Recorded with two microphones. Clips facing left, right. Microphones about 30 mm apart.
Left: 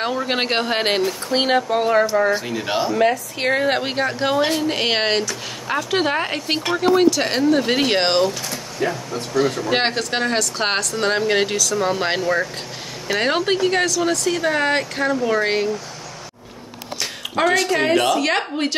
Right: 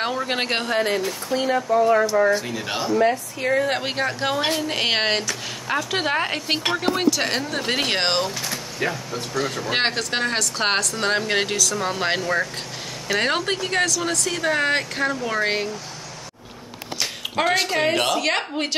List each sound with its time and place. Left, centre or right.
0.0 s speech: centre
0.3 s speech: centre
0.7 s speech: left
2.3 s speech: centre
2.9 s speech: left
3.8 s speech: centre
8.5 s vehicle: centre
9.1 s speech: centre
17.0 s a sound: centre
17.7 s speech: centre